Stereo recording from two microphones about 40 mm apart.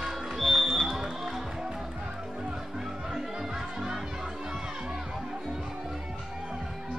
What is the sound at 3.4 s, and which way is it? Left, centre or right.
Music, centre.